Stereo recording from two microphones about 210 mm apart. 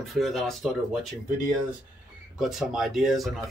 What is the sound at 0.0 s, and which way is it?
Speech, centre (ahead or behind).